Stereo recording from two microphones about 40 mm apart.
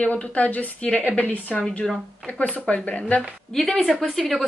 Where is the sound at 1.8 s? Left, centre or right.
Centre.